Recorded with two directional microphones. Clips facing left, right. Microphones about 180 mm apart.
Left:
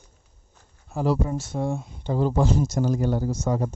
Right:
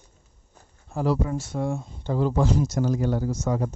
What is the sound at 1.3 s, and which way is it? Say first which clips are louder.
Speech: even; 25° left (ahead or behind).